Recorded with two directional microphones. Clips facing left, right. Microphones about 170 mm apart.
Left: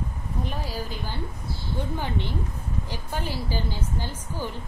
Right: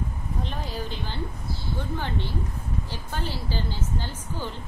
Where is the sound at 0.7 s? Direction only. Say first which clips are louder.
Even; 5° left (ahead or behind).